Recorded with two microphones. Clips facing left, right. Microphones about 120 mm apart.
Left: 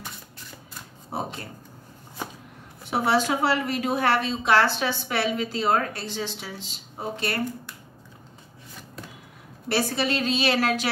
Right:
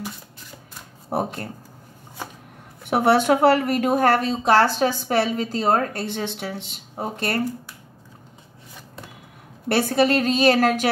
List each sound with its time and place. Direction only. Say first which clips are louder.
1.1 s speech: right 7 dB; 55° right (ahead or behind)
2.8 s a woman's voice: right 5 dB; 55° right (ahead or behind); by 6.0 s 40° right (ahead or behind)
6.0 s speech: right 4 dB; 60° right (ahead or behind)
9.7 s a woman's voice: right 6 dB; 50° right (ahead or behind)